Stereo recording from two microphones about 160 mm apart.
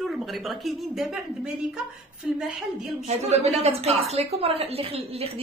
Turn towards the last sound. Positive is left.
turn(degrees=-40)  # may be behind; listen again after turning